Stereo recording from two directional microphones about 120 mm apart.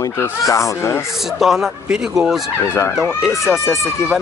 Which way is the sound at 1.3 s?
Centre (ahead or behind).